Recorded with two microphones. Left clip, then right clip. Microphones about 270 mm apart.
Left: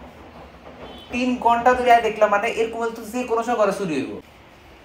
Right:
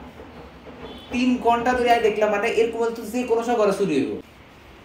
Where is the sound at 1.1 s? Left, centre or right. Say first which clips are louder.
Left 1 dB; centre.